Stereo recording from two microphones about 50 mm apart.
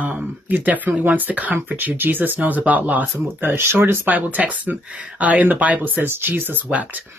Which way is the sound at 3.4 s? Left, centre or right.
Right.